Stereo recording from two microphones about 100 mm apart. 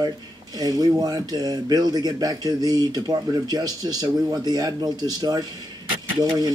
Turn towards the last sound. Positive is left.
turn(degrees=-40)  # may be behind; listen again after turning